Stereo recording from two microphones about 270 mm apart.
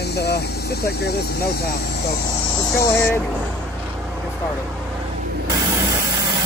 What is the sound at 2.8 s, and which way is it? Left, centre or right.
Speech, centre.